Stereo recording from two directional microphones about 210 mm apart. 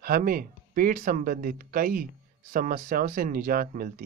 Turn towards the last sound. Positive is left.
turn(degrees=-45)  # may be behind; listen again after turning